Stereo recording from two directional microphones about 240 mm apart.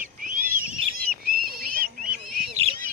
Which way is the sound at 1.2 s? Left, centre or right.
Right.